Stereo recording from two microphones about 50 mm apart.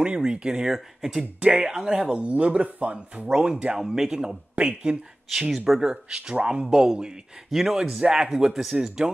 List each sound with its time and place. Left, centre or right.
0.0 s speech: centre
4.6 s speech: right
5.3 s speech: centre